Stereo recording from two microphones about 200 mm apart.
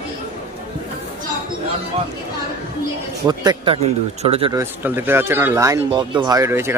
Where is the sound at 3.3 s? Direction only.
20° right (ahead or behind).